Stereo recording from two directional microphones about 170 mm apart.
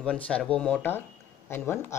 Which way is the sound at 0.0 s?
5° left (ahead or behind).